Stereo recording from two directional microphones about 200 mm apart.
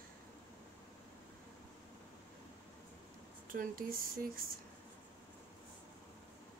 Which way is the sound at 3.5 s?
45° right (ahead or behind).